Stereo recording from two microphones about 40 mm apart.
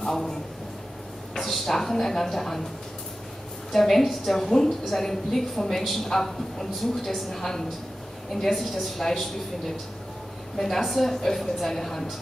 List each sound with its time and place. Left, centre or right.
0.0 s a man's voice: centre
3.7 s a woman's voice: centre